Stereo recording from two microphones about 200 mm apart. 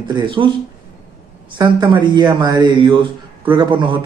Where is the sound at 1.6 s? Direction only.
20° right (ahead or behind).